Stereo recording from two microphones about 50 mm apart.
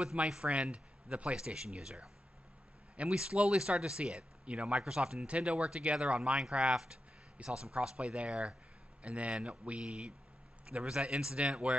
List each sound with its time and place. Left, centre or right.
0.0 s speech: centre
6.7 s speech: centre